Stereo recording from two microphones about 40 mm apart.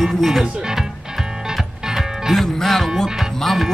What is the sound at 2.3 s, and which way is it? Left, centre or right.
Speech, centre.